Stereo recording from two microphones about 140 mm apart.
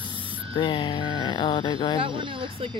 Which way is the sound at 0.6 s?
35° left (ahead or behind).